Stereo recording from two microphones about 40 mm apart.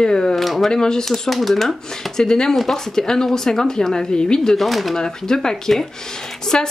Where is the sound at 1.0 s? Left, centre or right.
Centre.